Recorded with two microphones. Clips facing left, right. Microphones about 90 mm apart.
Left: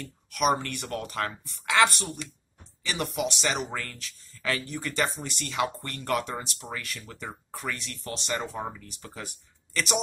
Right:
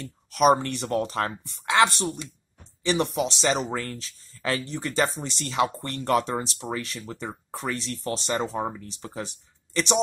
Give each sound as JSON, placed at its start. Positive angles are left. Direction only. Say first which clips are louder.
{"t": 0.0, "sound": "speech", "louder": "right 6 dB", "side_deg": -35}
{"t": 1.7, "sound": "speech", "louder": "right 2 dB", "side_deg": -20}